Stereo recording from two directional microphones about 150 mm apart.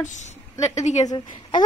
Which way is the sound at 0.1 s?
50° left (ahead or behind).